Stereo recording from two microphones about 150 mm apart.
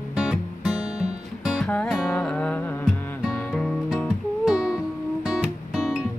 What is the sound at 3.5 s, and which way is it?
Music, centre (ahead or behind).